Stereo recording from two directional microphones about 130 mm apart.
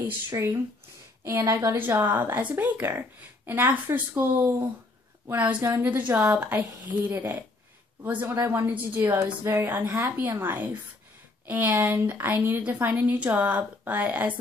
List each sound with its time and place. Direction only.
0.0 s a woman's voice: 25° right (ahead or behind)